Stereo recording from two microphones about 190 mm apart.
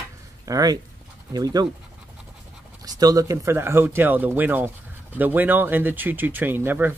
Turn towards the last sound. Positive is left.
turn(degrees=-10)  # may be behind; listen again after turning